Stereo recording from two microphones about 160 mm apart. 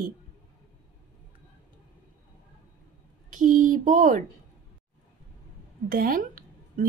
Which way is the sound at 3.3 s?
55° right (ahead or behind).